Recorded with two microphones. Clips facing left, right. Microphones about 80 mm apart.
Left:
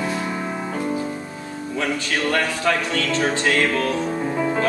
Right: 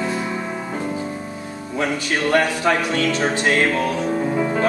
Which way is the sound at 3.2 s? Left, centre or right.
Right.